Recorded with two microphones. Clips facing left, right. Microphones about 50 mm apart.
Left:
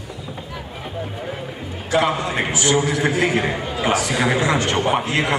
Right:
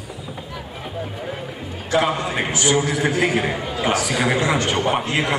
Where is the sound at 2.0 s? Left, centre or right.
Centre.